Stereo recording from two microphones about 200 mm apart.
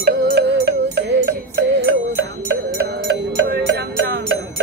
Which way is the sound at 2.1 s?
55° right (ahead or behind).